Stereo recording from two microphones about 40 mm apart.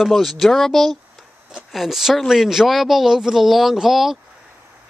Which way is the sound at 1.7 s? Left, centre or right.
Centre.